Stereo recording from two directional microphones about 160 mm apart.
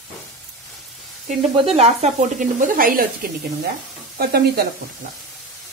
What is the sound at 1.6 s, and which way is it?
Speech, 40° right (ahead or behind).